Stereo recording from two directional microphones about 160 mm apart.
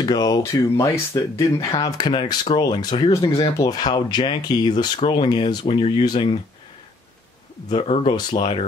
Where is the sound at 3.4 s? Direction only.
25° left (ahead or behind).